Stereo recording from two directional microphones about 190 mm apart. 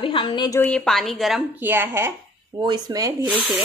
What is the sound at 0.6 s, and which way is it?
A woman's voice, 5° left (ahead or behind).